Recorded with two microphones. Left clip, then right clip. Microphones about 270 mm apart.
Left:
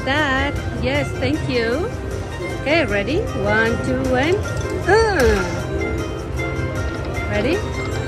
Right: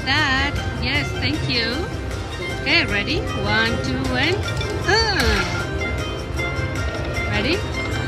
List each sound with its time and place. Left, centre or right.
0.1 s speech: centre